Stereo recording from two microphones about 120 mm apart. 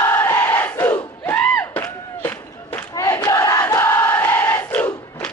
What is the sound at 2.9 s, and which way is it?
Crowd, 30° left (ahead or behind).